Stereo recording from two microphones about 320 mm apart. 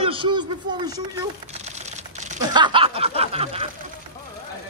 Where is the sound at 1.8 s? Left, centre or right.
Right.